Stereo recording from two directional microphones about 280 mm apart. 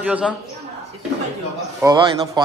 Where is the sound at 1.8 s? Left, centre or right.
Centre.